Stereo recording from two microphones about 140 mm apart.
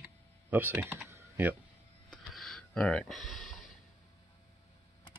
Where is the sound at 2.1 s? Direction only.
Centre (ahead or behind).